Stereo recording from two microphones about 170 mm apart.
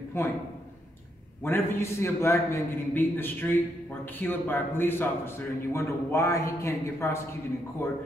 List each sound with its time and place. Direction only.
0.1 s a man's voice: 15° left (ahead or behind)
1.4 s a man's voice: 15° left (ahead or behind)